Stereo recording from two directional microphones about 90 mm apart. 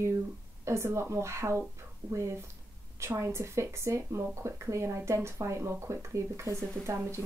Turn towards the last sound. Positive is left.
turn(degrees=-35)  # may be behind; listen again after turning